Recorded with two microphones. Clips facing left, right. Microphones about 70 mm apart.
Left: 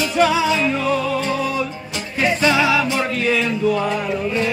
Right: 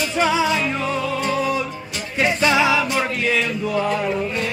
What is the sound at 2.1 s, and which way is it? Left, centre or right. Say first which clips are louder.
Music: left 1 dB; centre.